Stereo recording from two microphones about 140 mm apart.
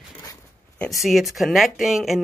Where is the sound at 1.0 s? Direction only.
Centre (ahead or behind).